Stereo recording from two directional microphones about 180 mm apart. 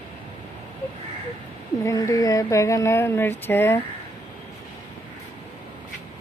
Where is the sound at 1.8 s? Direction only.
20° left (ahead or behind).